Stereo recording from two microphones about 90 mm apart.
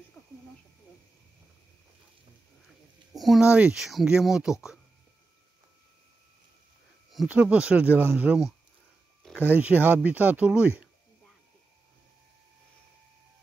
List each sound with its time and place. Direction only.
3.1 s a sound: centre (ahead or behind)
3.4 s speech: 10° right (ahead or behind)
7.2 s speech: 15° right (ahead or behind)
9.5 s speech: 20° right (ahead or behind)